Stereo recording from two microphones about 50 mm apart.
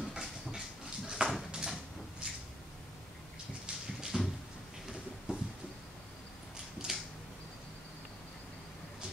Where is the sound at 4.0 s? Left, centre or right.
Centre.